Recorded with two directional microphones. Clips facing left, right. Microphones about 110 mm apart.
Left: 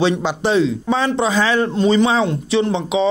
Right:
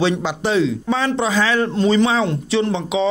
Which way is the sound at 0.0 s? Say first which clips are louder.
Left 2 dB; 25° left (ahead or behind).